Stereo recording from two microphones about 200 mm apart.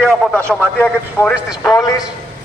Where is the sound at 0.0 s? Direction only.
5° left (ahead or behind).